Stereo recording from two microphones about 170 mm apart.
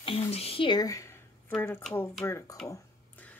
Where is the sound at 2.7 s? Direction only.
10° left (ahead or behind).